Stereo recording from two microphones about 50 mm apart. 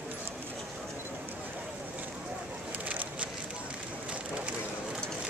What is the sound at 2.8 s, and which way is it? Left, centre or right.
Vehicle, right.